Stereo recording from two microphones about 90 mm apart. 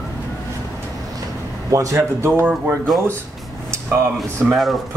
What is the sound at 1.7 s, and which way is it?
Speech, 35° right (ahead or behind).